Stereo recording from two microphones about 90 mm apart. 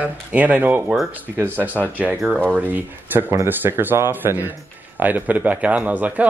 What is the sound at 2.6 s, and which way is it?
A woman's voice, 20° right (ahead or behind).